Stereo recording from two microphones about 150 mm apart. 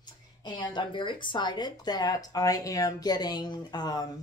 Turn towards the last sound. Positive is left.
turn(degrees=25)  # may be behind; listen again after turning